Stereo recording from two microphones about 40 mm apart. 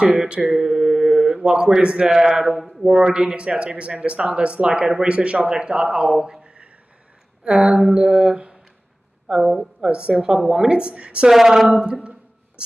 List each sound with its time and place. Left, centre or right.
0.5 s mantra: centre
1.3 s speech: centre
2.5 s speech: centre
2.9 s speech: right
6.4 s a sound: right
7.4 s mantra: right
9.3 s a woman's voice: centre
9.8 s speech: right
11.2 s a woman's voice: centre
11.8 s speech: right